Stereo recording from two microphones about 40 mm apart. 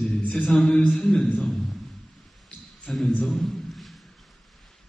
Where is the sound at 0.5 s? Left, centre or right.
Left.